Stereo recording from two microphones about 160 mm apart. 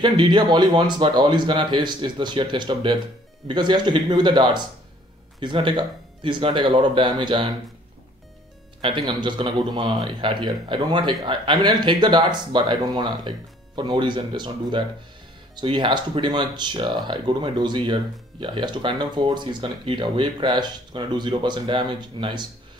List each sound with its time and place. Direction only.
0.0 s speech: 30° right (ahead or behind)
9.2 s speech: 30° right (ahead or behind)